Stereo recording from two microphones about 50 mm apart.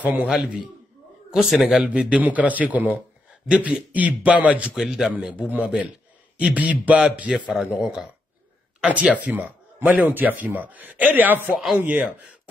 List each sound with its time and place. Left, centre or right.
0.0 s speech: right
1.3 s speech: centre
1.8 s speech: right
3.4 s a man's voice: right
4.7 s speech: centre
5.4 s a man's voice: right
7.6 s speech: centre
8.8 s a man's voice: right
11.5 s speech: centre
11.8 s speech: right